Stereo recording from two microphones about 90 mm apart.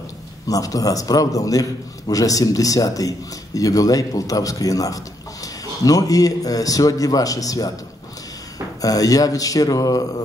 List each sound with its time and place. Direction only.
0.5 s a man's voice: 40° left (ahead or behind)
8.8 s speech: 40° left (ahead or behind)